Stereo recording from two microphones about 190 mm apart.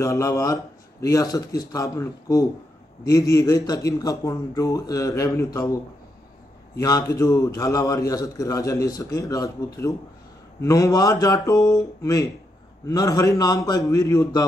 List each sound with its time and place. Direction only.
0.0 s a man's voice: 15° left (ahead or behind)
6.8 s a man's voice: 20° left (ahead or behind)